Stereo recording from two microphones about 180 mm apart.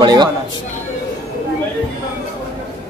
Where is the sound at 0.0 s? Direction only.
25° right (ahead or behind).